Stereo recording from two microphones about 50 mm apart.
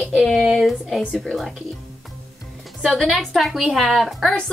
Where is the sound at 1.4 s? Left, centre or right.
Centre.